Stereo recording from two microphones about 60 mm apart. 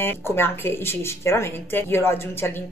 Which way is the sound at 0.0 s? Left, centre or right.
Left.